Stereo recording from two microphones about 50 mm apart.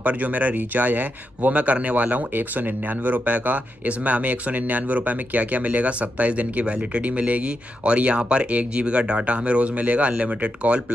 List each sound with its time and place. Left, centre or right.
0.0 s speech: right